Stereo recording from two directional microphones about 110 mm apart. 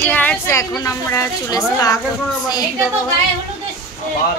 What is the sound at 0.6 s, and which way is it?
Speech, 30° left (ahead or behind).